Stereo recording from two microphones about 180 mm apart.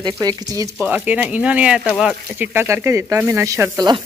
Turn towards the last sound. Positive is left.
turn(degrees=-25)  # may be behind; listen again after turning